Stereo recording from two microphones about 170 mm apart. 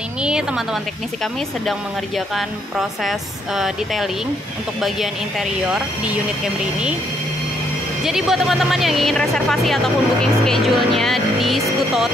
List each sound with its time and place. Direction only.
1.2 s speech: centre (ahead or behind)
6.6 s speech: 5° right (ahead or behind)
8.0 s speech: centre (ahead or behind)